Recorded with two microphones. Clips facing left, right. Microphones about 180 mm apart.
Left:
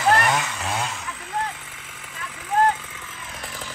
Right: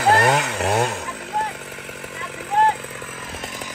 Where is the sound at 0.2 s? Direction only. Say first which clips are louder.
Right 5 dB; 60° right (ahead or behind).